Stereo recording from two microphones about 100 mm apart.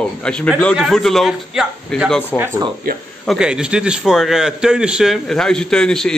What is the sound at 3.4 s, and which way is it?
A man's voice, 10° right (ahead or behind).